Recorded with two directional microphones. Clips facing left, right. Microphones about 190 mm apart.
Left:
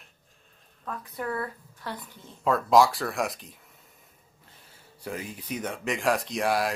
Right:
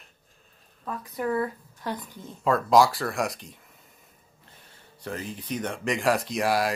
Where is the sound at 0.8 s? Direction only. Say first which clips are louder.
Right 4 dB; 15° right (ahead or behind).